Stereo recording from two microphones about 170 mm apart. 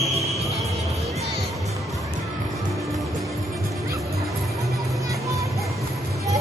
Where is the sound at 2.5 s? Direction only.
Centre (ahead or behind).